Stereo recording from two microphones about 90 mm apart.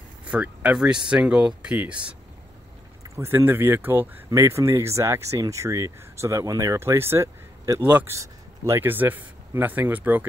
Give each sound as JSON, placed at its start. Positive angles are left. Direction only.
{"t": 0.2, "sound": "speech", "side_deg": -15}
{"t": 3.2, "sound": "speech", "side_deg": -25}
{"t": 7.8, "sound": "speech", "side_deg": -20}
{"t": 8.1, "sound": "speech", "side_deg": -30}